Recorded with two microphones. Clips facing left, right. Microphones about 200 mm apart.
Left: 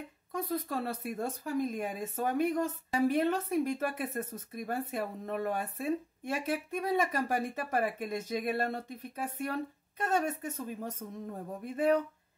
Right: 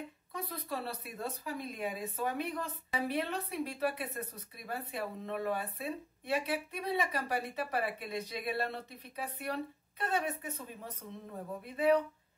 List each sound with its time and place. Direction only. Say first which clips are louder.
0.3 s speech: left 7 dB; 45° left (ahead or behind)